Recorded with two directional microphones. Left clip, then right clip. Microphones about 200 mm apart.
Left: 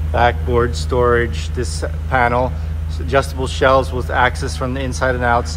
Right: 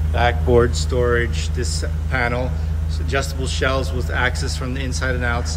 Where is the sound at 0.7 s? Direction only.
Centre (ahead or behind).